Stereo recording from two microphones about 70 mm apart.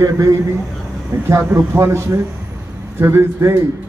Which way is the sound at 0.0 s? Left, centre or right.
Right.